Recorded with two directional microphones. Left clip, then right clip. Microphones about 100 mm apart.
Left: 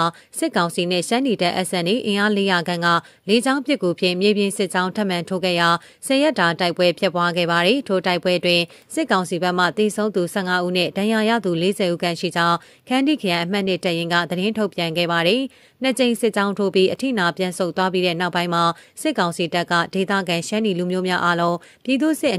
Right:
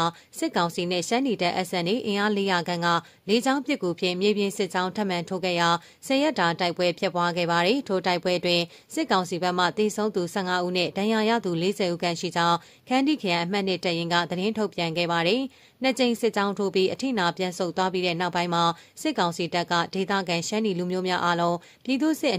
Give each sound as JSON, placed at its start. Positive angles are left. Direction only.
{"t": 0.0, "sound": "speech", "side_deg": 35}